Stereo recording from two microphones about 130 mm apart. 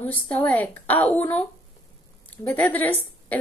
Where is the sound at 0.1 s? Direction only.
10° left (ahead or behind).